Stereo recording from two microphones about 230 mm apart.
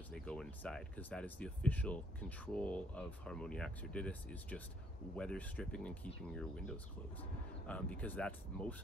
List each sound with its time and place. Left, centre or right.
0.1 s speech: centre